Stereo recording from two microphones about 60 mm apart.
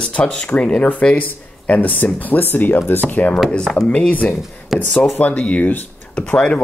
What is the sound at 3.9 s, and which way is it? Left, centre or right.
Speech, left.